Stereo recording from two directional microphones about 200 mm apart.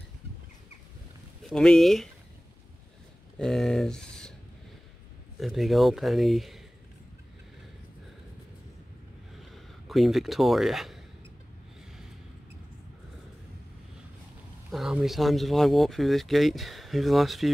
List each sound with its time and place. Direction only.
1.5 s speech: 5° left (ahead or behind)
3.3 s speech: centre (ahead or behind)
5.4 s speech: centre (ahead or behind)
9.4 s a sound: centre (ahead or behind)
14.7 s speech: 5° right (ahead or behind)